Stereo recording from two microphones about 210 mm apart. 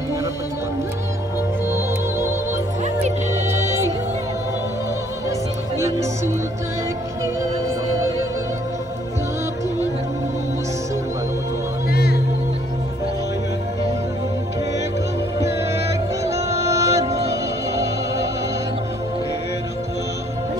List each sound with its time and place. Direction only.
1.7 s music: 10° right (ahead or behind)
2.8 s music: 35° right (ahead or behind)
3.4 s music: 10° right (ahead or behind)
5.8 s music: 15° right (ahead or behind)
11.9 s music: 50° left (ahead or behind)
16.3 s music: 15° right (ahead or behind)